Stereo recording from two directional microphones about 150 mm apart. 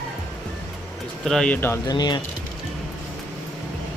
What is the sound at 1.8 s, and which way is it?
Speech, 30° left (ahead or behind).